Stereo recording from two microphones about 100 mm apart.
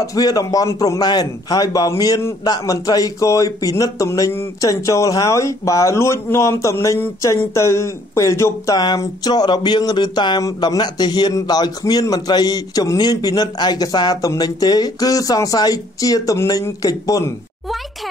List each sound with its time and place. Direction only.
0.0 s a man's voice: 40° left (ahead or behind)
8.7 s a man's voice: 45° left (ahead or behind)